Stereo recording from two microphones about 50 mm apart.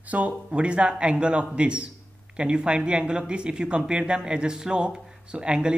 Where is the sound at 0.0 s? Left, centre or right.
Right.